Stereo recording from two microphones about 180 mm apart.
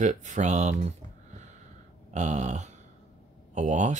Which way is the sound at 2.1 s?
40° right (ahead or behind).